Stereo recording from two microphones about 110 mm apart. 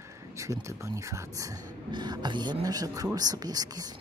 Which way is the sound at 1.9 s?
40° right (ahead or behind).